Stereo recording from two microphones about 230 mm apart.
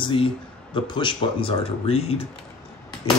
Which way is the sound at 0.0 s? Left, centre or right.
Left.